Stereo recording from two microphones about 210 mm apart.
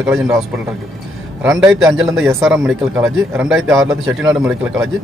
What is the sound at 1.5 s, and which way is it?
Speech, 15° right (ahead or behind).